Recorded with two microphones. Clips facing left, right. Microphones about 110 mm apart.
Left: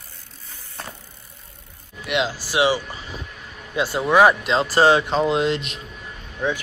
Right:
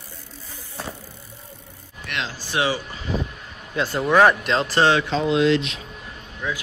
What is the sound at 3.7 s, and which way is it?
Speech, 10° left (ahead or behind).